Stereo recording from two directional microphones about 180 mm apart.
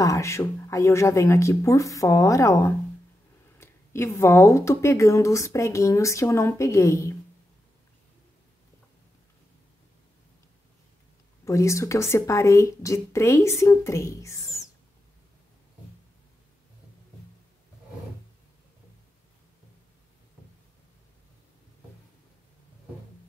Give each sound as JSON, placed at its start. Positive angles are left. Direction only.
{"t": 0.0, "sound": "speech", "side_deg": 15}
{"t": 11.4, "sound": "speech", "side_deg": 15}